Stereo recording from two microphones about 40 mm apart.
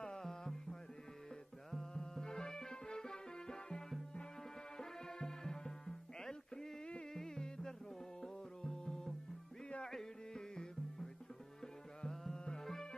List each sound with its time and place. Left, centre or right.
0.0 s music: centre